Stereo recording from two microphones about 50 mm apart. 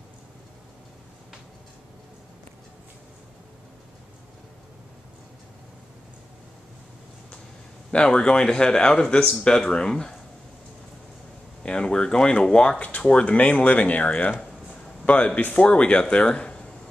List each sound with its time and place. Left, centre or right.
7.9 s speech: left
11.6 s speech: centre